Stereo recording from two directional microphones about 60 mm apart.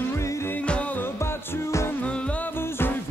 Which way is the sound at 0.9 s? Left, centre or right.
Left.